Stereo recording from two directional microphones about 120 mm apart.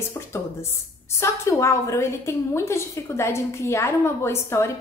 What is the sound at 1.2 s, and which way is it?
A woman's voice, 25° left (ahead or behind).